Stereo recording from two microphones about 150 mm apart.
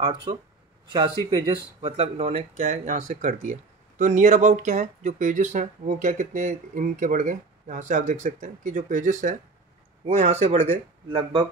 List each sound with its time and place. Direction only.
0.0 s speech: 35° right (ahead or behind)